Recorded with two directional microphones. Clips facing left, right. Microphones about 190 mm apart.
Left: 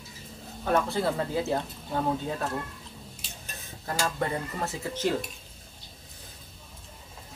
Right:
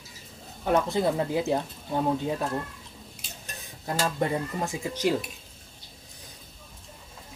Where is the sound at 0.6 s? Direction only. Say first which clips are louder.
Right 2 dB; 15° right (ahead or behind).